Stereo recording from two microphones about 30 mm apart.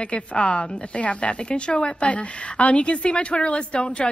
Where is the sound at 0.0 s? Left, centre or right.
Left.